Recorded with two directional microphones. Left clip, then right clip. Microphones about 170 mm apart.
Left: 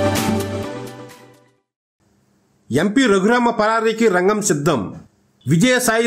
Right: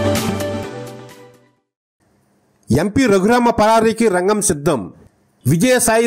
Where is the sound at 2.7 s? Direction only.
40° right (ahead or behind).